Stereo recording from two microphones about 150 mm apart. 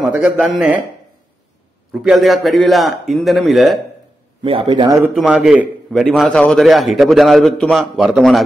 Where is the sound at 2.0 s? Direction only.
Centre (ahead or behind).